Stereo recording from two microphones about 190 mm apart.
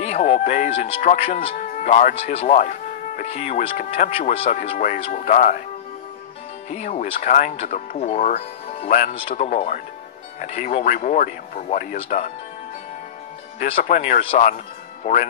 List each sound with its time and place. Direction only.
0.0 s speech: 40° left (ahead or behind)
1.0 s speech: 45° left (ahead or behind)
6.7 s speech: 40° left (ahead or behind)
13.6 s speech: 30° left (ahead or behind)
13.8 s speech: 40° left (ahead or behind)